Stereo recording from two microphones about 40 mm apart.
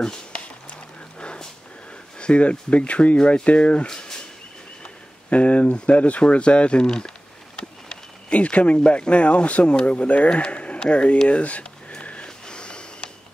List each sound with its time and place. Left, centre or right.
0.0 s a sound: left
2.1 s speech: left
3.8 s speech: centre
4.8 s speech: left
12.0 s a sound: left
12.4 s snort: left